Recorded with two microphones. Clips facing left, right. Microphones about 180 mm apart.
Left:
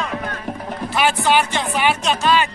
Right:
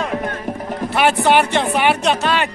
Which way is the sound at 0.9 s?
60° right (ahead or behind).